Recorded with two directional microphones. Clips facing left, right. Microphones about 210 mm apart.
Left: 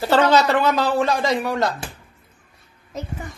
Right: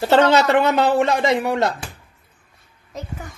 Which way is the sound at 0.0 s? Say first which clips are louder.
Right 2 dB; 25° right (ahead or behind).